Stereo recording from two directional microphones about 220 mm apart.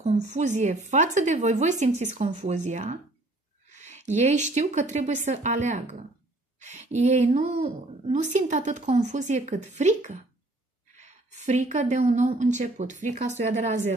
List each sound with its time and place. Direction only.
0.0 s a woman's voice: 30° right (ahead or behind)